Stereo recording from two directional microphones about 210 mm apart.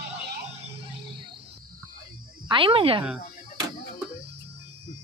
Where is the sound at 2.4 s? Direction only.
25° right (ahead or behind).